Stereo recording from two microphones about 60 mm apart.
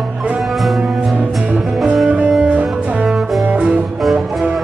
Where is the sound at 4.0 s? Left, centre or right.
Centre.